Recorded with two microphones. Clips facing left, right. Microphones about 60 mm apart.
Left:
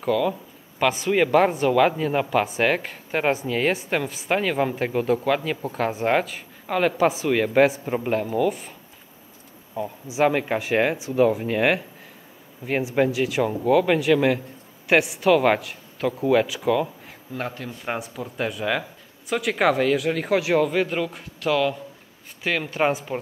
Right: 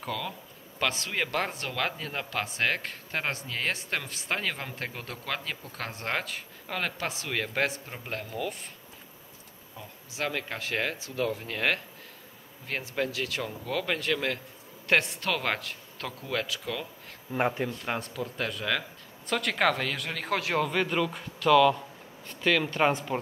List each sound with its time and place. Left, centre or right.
0.0 s speech: centre
7.8 s a man's voice: left
8.1 s speech: centre
10.0 s speech: centre
17.3 s speech: centre
17.6 s speech: centre